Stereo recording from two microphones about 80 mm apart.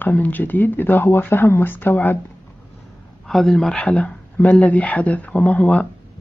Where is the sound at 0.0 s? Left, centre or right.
Left.